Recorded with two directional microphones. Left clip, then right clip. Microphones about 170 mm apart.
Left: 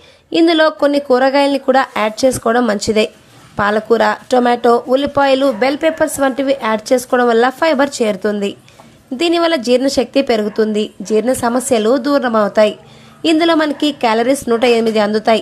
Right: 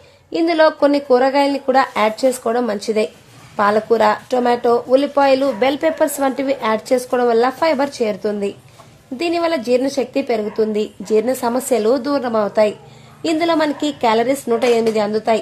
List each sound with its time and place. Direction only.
0.3 s speech: 20° left (ahead or behind)
5.6 s a woman's voice: 5° left (ahead or behind)